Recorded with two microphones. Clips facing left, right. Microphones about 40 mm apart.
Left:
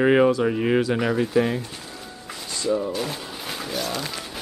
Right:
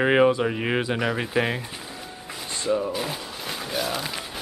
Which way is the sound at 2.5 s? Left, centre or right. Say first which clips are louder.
Left 1 dB; right.